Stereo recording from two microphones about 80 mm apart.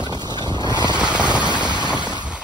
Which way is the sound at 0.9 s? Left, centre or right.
Centre.